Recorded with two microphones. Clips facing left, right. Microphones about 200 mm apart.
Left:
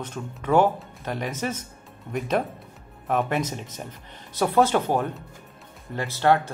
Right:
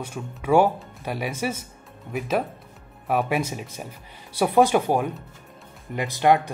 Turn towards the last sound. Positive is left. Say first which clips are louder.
# right 2 dB
turn(degrees=-15)  # may be behind; listen again after turning